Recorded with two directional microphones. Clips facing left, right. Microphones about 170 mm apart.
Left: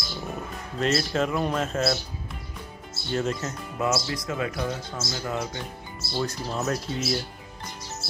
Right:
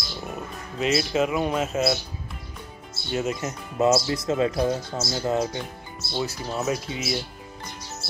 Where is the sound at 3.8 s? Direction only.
25° right (ahead or behind).